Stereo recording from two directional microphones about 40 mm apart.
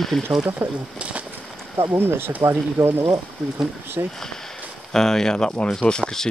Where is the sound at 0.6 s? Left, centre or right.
Right.